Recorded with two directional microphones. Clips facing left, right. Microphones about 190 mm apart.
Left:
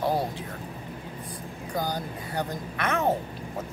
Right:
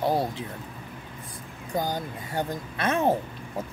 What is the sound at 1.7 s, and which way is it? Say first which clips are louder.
Speech: right 2 dB; 25° right (ahead or behind).